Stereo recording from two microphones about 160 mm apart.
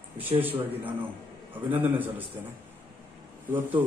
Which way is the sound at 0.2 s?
10° right (ahead or behind).